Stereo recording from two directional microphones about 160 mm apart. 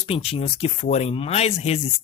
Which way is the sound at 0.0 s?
35° left (ahead or behind).